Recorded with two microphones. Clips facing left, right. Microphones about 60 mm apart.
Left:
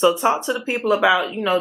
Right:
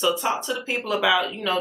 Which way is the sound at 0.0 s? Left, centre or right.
Left.